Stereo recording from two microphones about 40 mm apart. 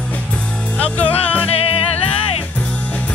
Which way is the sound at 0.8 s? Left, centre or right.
Left.